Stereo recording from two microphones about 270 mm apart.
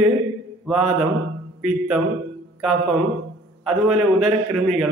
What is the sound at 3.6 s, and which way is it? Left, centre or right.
Speech, centre.